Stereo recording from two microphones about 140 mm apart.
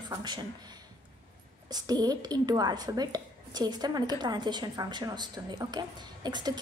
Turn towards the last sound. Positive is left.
turn(degrees=-30)  # may be behind; listen again after turning